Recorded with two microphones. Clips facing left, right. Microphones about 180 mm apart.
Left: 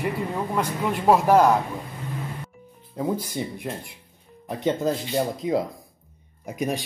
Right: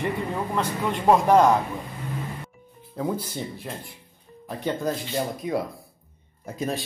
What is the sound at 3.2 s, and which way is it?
Speech, 10° left (ahead or behind).